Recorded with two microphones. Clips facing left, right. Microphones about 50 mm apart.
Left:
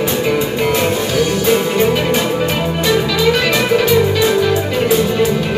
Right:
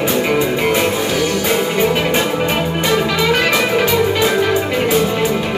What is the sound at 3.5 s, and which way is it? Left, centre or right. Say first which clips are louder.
Music: left 2 dB; centre.